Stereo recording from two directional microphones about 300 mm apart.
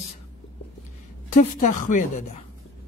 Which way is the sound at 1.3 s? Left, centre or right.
Left.